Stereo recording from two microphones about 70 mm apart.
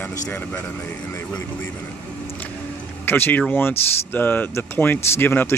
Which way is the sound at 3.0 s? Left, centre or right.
Left.